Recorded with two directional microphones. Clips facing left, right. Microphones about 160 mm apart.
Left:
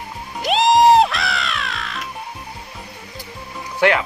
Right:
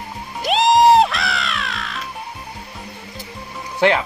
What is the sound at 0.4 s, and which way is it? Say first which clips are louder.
Music: even; centre (ahead or behind).